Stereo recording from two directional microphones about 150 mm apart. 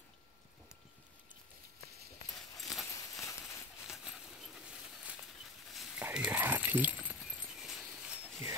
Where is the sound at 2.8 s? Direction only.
20° left (ahead or behind).